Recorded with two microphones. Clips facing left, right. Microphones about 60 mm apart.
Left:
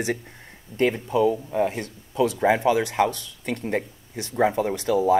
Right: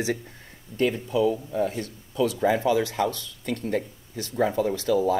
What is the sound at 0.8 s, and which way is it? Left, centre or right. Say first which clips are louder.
Speech: left 2 dB; left.